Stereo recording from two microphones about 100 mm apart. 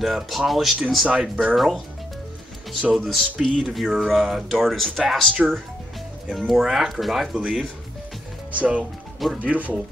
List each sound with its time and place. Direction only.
0.0 s speech: centre (ahead or behind)
2.9 s speech: centre (ahead or behind)
5.3 s speech: 15° right (ahead or behind)
6.3 s speech: centre (ahead or behind)
8.5 s speech: 15° right (ahead or behind)